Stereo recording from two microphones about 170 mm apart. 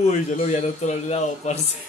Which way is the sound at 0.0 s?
45° left (ahead or behind).